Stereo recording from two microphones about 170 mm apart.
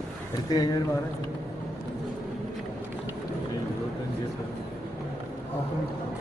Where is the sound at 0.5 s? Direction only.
25° left (ahead or behind).